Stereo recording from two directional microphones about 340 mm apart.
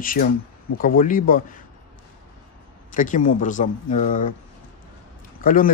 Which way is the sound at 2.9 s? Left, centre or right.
Left.